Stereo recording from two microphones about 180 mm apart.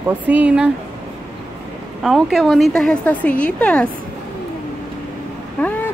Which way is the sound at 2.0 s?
Centre (ahead or behind).